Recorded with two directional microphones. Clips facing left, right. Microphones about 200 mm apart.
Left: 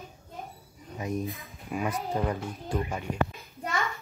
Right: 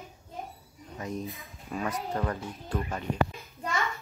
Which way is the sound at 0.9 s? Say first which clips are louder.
Left 3 dB; 15° left (ahead or behind).